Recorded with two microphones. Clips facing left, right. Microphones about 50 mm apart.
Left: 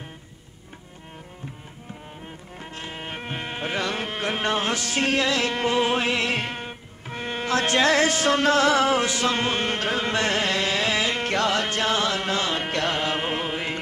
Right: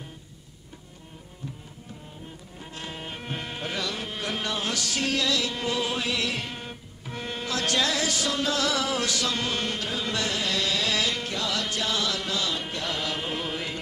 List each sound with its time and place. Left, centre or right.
2.7 s music: left
11.2 s music: left
12.6 s music: left
12.9 s chant: left